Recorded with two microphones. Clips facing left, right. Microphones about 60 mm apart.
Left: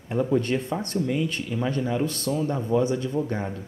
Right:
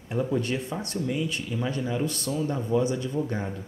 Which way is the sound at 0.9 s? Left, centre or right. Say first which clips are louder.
Left 3 dB; left.